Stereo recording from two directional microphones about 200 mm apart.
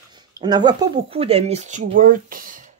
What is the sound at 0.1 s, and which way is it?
Speech, 20° right (ahead or behind).